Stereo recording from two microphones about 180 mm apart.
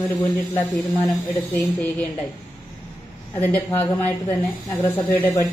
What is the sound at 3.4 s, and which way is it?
Speech, 15° left (ahead or behind).